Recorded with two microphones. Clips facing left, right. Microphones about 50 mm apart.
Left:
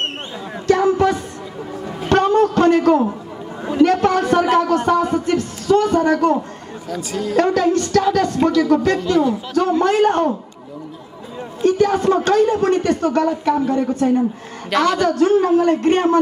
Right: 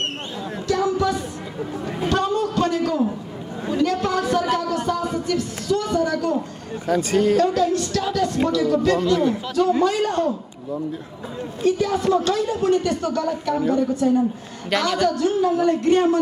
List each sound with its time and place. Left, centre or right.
0.7 s music: left
2.0 s a sound: left
6.9 s a woman's voice: right
7.3 s a woman's voice: left
11.6 s a woman's voice: left